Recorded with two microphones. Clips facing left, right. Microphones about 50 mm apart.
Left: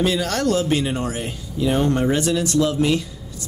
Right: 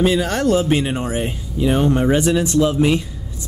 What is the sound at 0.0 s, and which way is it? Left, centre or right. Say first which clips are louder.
Speech: right 3 dB; centre.